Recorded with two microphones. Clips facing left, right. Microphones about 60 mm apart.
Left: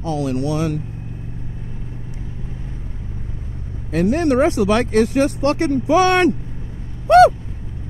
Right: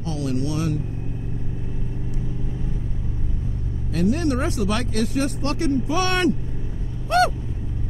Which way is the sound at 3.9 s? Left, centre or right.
Left.